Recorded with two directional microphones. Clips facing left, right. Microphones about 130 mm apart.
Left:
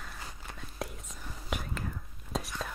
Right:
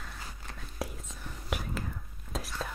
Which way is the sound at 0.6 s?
Centre (ahead or behind).